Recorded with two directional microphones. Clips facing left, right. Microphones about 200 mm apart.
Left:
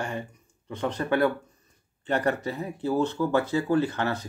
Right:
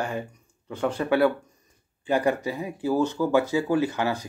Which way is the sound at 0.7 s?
10° right (ahead or behind).